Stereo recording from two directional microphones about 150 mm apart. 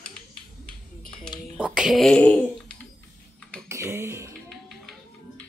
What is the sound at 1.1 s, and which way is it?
Dishes, 30° left (ahead or behind).